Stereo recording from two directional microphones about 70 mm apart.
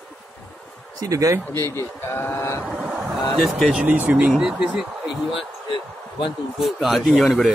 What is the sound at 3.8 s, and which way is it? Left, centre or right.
Speech, right.